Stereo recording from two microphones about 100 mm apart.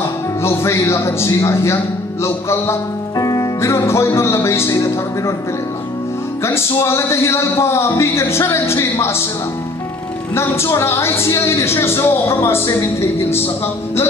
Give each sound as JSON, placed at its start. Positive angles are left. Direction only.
{"t": 0.4, "sound": "a woman's voice", "side_deg": 25}
{"t": 6.4, "sound": "a woman's voice", "side_deg": 25}
{"t": 10.3, "sound": "a woman's voice", "side_deg": 25}